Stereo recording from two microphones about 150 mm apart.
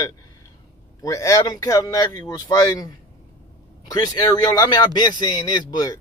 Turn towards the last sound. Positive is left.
turn(degrees=25)  # may be behind; listen again after turning